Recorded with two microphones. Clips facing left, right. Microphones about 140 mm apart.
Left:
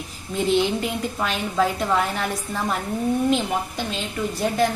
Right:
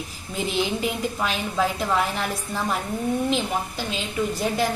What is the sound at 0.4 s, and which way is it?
A woman's voice, centre (ahead or behind).